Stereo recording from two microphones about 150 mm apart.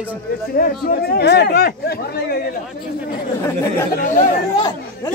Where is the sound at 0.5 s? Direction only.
90° left.